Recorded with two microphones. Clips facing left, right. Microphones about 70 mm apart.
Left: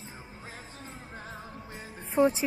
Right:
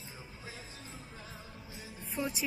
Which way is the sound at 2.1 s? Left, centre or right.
Left.